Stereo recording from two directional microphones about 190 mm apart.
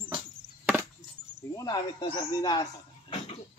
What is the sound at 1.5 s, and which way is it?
Speech, 20° left (ahead or behind).